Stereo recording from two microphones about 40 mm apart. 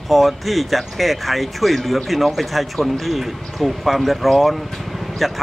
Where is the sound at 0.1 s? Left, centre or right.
Centre.